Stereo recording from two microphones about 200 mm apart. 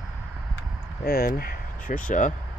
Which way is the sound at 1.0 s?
50° left (ahead or behind).